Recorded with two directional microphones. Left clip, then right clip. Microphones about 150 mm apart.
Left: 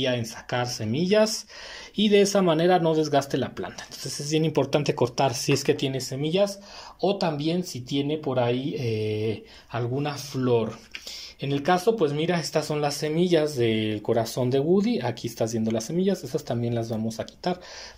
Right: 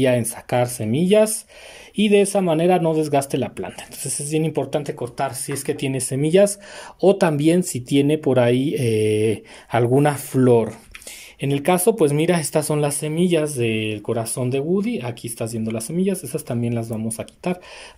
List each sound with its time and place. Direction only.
0.0 s speech: 30° right (ahead or behind); by 5.6 s 15° left (ahead or behind)
5.9 s speech: 25° right (ahead or behind)
6.2 s speech: 40° right (ahead or behind)
11.4 s speech: 20° right (ahead or behind)
11.8 s speech: 35° right (ahead or behind); by 17.6 s 20° right (ahead or behind)